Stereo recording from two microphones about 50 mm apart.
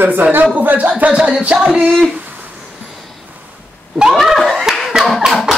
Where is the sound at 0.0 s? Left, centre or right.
Right.